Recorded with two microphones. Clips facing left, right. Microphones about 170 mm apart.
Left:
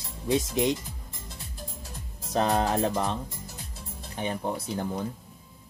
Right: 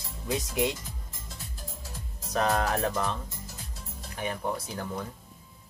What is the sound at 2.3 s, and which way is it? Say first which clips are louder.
Speech: left 2 dB; 30° left (ahead or behind).